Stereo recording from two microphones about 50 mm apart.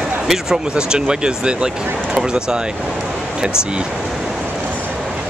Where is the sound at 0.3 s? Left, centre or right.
Centre.